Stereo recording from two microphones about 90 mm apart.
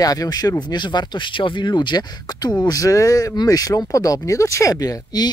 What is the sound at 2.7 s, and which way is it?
Speech, 40° left (ahead or behind).